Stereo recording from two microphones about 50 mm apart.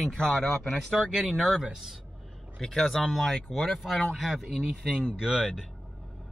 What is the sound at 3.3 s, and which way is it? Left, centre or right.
Speech, left.